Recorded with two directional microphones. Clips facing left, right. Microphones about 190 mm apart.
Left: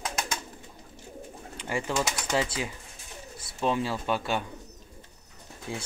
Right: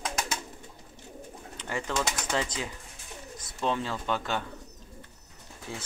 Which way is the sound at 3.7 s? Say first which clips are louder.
Left 2 dB; 10° left (ahead or behind).